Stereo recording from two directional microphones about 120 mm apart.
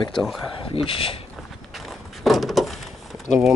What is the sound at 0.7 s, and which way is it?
Speech, 50° left (ahead or behind).